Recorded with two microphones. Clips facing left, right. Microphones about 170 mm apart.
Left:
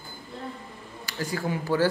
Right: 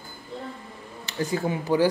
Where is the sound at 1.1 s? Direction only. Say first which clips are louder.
Right 3 dB; 20° right (ahead or behind).